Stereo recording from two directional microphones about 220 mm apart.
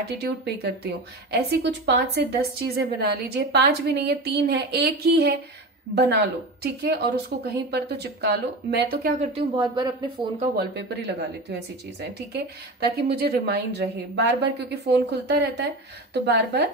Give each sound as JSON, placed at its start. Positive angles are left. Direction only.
{"t": 0.1, "sound": "a woman's voice", "side_deg": -50}
{"t": 9.2, "sound": "speech", "side_deg": -25}
{"t": 10.5, "sound": "a woman's voice", "side_deg": -50}